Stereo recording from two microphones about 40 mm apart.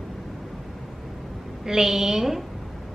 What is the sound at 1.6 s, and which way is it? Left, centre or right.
Speech, centre.